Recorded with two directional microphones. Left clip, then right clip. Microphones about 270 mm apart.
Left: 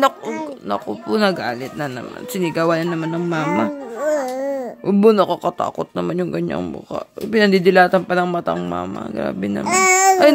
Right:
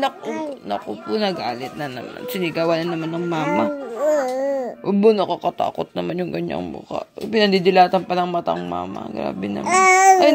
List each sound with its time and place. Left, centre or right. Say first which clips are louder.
0.3 s speech: left 2 dB; left